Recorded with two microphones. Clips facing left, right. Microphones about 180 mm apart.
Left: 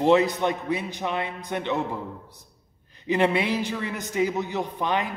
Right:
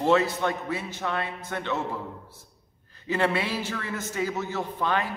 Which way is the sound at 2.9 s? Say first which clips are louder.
Left 3 dB; 20° left (ahead or behind).